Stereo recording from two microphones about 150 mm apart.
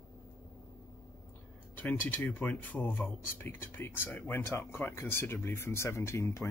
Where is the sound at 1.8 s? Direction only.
10° left (ahead or behind).